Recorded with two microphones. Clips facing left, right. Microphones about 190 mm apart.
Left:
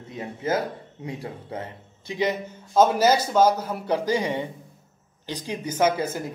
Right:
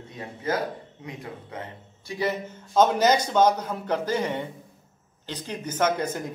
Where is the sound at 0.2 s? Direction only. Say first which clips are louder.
Left 2 dB; 25° left (ahead or behind).